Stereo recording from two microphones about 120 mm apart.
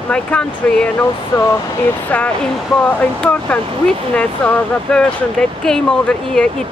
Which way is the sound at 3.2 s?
10° left (ahead or behind).